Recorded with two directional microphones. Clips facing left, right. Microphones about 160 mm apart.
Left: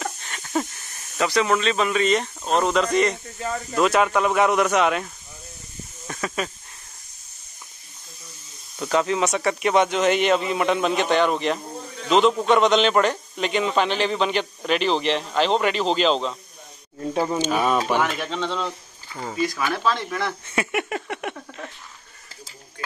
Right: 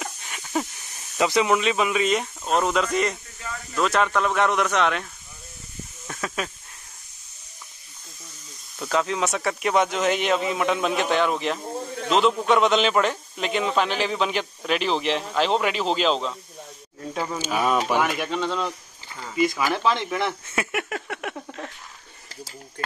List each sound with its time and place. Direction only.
0.2 s a sound: 5° right (ahead or behind)
1.1 s a man's voice: 15° right (ahead or behind)
3.3 s speech: 40° left (ahead or behind)
3.7 s a man's voice: 5° left (ahead or behind)
6.0 s snake: centre (ahead or behind)
8.7 s a man's voice: centre (ahead or behind)
17.1 s speech: 25° left (ahead or behind)
17.4 s speech: 5° right (ahead or behind)
19.3 s speech: 20° right (ahead or behind)
20.4 s a sound: centre (ahead or behind)